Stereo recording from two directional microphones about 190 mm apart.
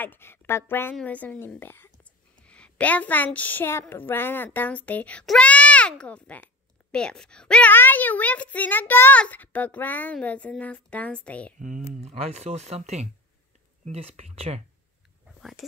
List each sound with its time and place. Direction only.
0.0 s a woman's voice: 10° left (ahead or behind)
11.9 s speech: 35° right (ahead or behind)